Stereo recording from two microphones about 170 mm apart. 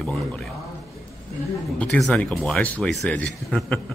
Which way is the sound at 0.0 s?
5° left (ahead or behind).